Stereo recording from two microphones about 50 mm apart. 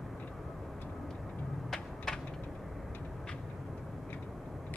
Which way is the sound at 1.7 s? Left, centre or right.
Centre.